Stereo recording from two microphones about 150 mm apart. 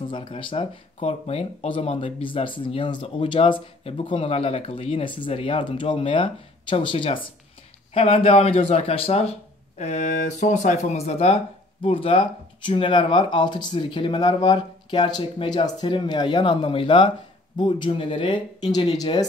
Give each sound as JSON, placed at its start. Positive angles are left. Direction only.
{"t": 0.1, "sound": "speech", "side_deg": 35}